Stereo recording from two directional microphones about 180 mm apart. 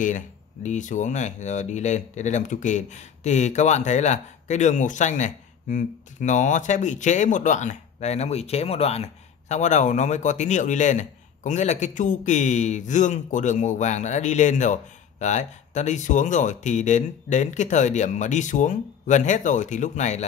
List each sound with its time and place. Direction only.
0.7 s speech: 45° left (ahead or behind)